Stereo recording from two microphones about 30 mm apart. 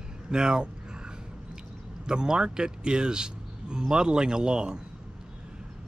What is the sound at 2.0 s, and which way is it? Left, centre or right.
Speech, right.